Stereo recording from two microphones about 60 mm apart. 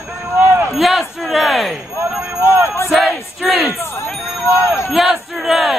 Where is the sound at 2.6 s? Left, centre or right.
Left.